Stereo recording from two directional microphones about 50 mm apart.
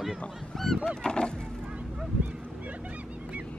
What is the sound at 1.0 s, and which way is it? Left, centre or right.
Goose, centre.